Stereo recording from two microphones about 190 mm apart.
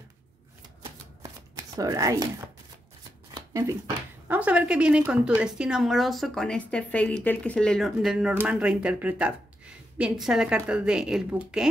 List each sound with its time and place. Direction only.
1.2 s chopping: 20° right (ahead or behind)
4.3 s speech: 5° right (ahead or behind)